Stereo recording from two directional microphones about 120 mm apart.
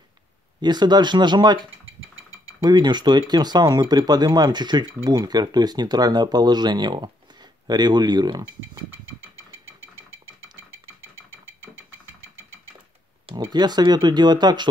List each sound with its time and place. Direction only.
0.6 s speech: 35° right (ahead or behind)
2.6 s speech: 35° right (ahead or behind)
13.5 s speech: 35° right (ahead or behind)